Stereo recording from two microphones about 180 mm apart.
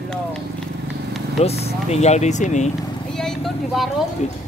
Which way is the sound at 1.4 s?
35° left (ahead or behind).